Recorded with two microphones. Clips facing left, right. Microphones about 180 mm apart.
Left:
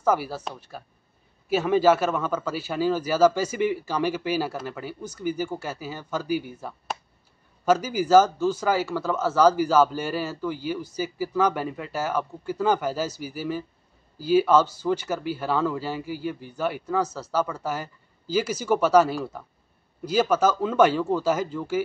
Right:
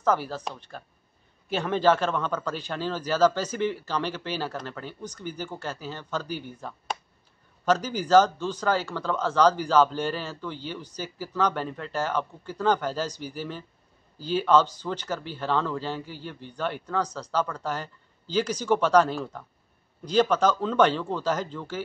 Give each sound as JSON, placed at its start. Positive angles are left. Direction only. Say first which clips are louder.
{"t": 0.0, "sound": "speech", "louder": "left 2 dB", "side_deg": 10}